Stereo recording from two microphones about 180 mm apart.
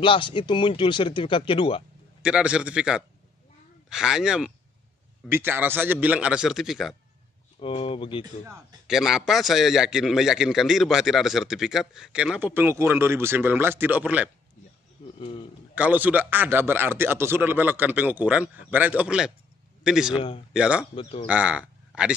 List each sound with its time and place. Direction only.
0.0 s speech: 30° left (ahead or behind)
2.2 s a man's voice: 5° right (ahead or behind)
7.5 s speech: 30° left (ahead or behind)
8.8 s a man's voice: centre (ahead or behind)
15.1 s a man's voice: 30° left (ahead or behind)
15.7 s a man's voice: 10° right (ahead or behind)
20.2 s speech: 30° left (ahead or behind)
20.5 s a man's voice: 5° right (ahead or behind)
20.9 s speech: 30° left (ahead or behind)
21.3 s a man's voice: 5° right (ahead or behind)